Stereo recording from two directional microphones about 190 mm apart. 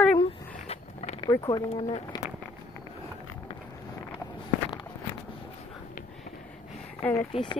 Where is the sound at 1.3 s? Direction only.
20° left (ahead or behind).